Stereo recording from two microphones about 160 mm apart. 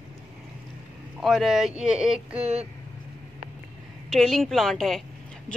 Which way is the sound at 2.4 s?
40° right (ahead or behind).